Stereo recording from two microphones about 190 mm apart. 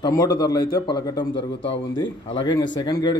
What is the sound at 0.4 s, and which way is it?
A man's voice, 20° left (ahead or behind).